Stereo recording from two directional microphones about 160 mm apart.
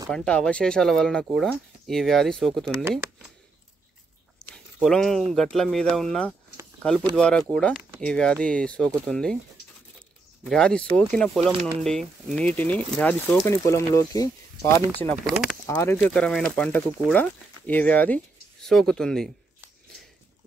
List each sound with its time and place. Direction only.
0.1 s speech: 5° left (ahead or behind)
4.7 s speech: centre (ahead or behind)
10.4 s speech: 5° left (ahead or behind)
16.1 s speech: 5° left (ahead or behind)